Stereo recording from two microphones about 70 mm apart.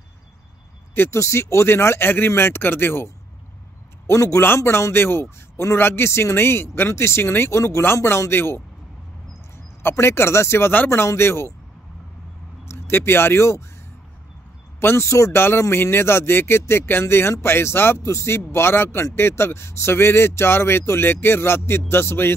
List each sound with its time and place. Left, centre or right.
0.9 s speech: left
4.1 s a man's voice: left
9.8 s speech: left
12.6 s speech: left
14.8 s speech: left